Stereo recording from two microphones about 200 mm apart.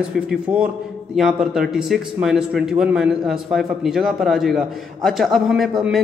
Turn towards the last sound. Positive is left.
turn(degrees=0)  # may be behind; listen again after turning